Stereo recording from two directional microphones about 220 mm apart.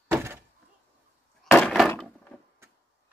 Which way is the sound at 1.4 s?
5° left (ahead or behind).